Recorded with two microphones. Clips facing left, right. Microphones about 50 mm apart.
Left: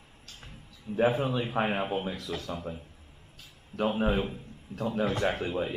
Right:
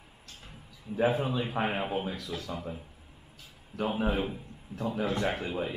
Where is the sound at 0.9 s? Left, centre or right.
Centre.